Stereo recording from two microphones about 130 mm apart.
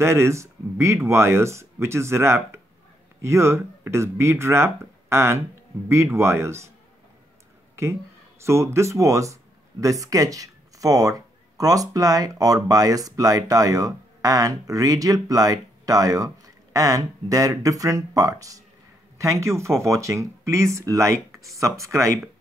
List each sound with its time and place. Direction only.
0.0 s speech: 20° right (ahead or behind)
8.5 s speech: 20° right (ahead or behind)